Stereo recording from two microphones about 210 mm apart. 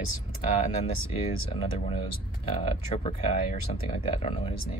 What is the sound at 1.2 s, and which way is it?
Speech, 30° left (ahead or behind).